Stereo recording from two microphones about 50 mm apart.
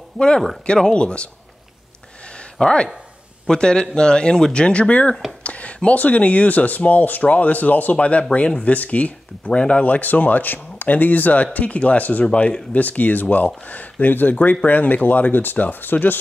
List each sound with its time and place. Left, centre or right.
0.7 s speech: centre
2.6 s speech: left
12.3 s speech: left